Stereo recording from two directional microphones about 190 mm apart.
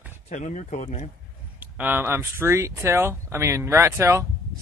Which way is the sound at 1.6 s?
10° right (ahead or behind).